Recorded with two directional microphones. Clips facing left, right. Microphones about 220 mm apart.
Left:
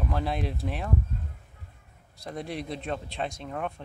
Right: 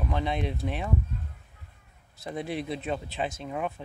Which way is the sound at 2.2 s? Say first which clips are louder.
Right 2 dB; centre (ahead or behind).